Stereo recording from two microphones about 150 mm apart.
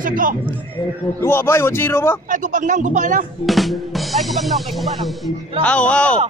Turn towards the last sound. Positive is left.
turn(degrees=10)  # may be behind; listen again after turning